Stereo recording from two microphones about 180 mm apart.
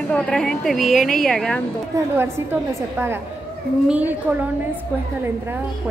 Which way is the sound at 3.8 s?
10° right (ahead or behind).